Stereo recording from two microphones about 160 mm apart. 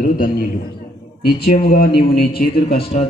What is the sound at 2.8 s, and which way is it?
Speech, 40° left (ahead or behind).